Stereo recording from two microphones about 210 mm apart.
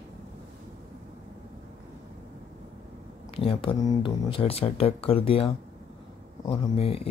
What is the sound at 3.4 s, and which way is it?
Speech, 25° left (ahead or behind).